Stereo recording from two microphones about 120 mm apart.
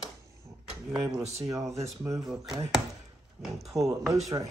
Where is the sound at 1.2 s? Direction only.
65° right (ahead or behind).